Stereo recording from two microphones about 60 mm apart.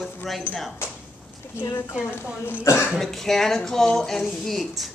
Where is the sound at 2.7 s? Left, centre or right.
Left.